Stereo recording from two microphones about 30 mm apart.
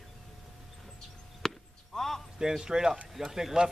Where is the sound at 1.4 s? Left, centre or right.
Centre.